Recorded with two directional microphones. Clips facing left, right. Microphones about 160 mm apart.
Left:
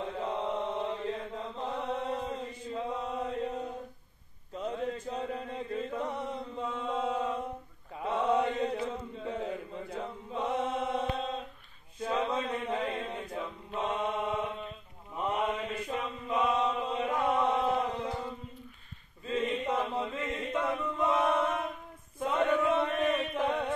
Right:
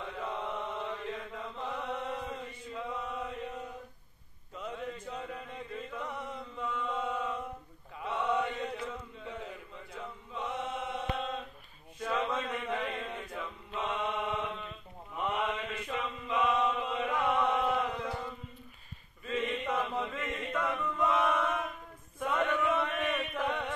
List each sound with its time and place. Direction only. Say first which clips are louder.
0.0 s mantra: left 4 dB; 30° left (ahead or behind)
4.6 s chant: left 5 dB; 35° left (ahead or behind)
7.9 s mantra: left 4 dB; 40° left (ahead or behind)
12.4 s chant: left 2 dB; 15° left (ahead or behind)
12.7 s chant: left 2 dB; 45° left (ahead or behind)
13.1 s chant: left 3 dB; 30° left (ahead or behind)
15.1 s mantra: left 2 dB; 35° left (ahead or behind)
19.2 s chant: left 2 dB; 30° left (ahead or behind)